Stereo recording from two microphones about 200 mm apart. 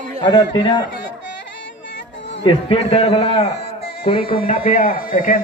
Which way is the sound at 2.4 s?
30° left (ahead or behind).